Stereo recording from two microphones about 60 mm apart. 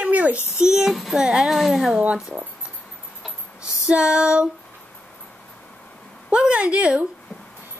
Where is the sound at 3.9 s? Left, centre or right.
Centre.